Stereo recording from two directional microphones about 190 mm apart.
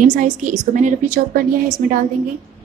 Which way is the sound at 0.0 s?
45° right (ahead or behind).